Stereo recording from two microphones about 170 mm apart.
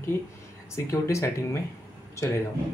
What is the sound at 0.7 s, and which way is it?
A man's voice, 15° left (ahead or behind).